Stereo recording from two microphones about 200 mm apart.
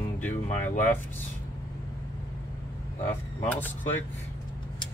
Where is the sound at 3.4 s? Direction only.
10° left (ahead or behind).